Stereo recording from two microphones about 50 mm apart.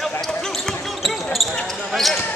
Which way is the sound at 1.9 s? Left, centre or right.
Centre.